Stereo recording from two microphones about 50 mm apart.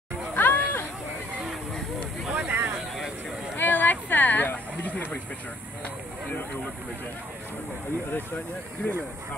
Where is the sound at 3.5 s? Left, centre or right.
Left.